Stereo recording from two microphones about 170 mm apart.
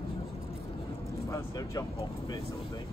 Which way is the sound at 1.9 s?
25° left (ahead or behind).